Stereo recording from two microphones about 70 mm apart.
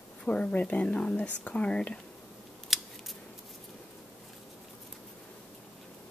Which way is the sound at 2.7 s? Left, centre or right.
Centre.